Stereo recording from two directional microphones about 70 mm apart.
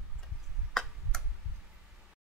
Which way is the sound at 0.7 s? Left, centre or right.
Centre.